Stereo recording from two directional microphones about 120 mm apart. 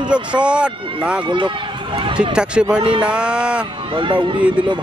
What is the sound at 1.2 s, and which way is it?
Speech, 40° right (ahead or behind).